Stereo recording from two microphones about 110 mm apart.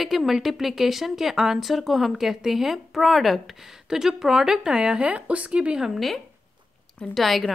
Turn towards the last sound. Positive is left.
turn(degrees=0)  # may be behind; listen again after turning